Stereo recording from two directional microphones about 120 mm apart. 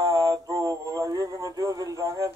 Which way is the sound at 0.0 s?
30° right (ahead or behind).